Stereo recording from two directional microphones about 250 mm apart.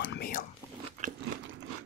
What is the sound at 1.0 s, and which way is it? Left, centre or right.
Biting, right.